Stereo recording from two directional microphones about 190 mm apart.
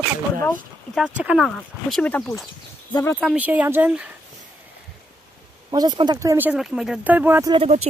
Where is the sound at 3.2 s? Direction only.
10° right (ahead or behind).